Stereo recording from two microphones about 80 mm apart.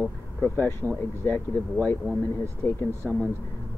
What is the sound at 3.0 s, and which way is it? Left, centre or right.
Speech, centre.